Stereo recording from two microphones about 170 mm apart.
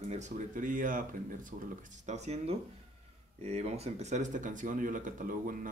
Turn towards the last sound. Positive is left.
turn(degrees=-55)  # may be behind; listen again after turning